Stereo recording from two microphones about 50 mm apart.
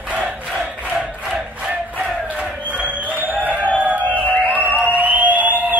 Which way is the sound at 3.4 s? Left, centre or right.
Right.